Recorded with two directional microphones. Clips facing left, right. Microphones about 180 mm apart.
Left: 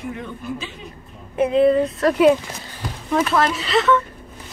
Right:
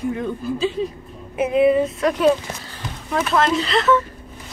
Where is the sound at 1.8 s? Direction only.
5° left (ahead or behind).